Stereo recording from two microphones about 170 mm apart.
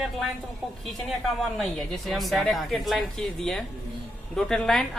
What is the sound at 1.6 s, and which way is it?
A woman's voice, centre (ahead or behind).